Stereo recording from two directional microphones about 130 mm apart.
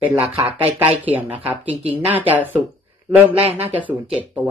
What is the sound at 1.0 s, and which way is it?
Speech, 10° right (ahead or behind).